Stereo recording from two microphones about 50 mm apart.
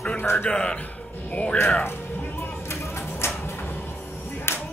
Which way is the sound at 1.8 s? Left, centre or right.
Left.